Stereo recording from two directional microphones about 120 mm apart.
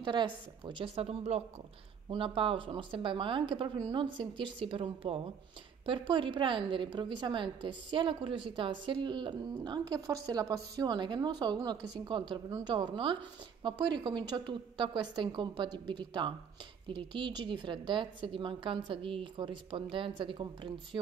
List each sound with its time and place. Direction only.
0.0 s a woman's voice: 40° right (ahead or behind); by 1.4 s 60° right (ahead or behind)
2.0 s a woman's voice: 45° right (ahead or behind)